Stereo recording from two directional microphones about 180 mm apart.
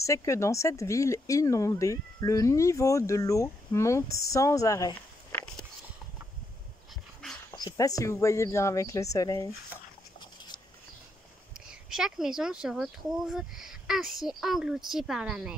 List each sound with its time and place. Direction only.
0.0 s speech: 15° left (ahead or behind)
7.5 s speech: 20° left (ahead or behind)
11.6 s speech: 5° right (ahead or behind)